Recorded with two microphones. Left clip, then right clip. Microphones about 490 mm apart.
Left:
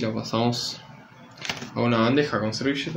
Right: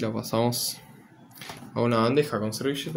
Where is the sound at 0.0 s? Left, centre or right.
Right.